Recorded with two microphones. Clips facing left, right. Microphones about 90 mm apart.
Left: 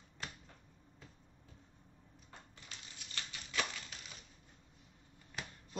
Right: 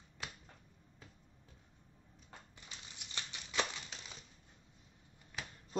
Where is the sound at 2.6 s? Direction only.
20° right (ahead or behind).